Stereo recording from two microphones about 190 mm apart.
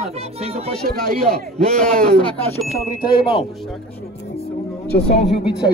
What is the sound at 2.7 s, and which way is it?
Speech, 25° left (ahead or behind).